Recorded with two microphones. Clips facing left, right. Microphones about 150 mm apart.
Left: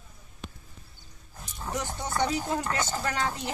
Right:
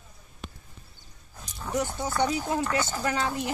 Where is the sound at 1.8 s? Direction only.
10° right (ahead or behind).